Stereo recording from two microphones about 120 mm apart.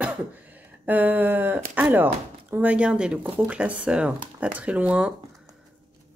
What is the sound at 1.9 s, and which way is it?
Speech, 15° right (ahead or behind).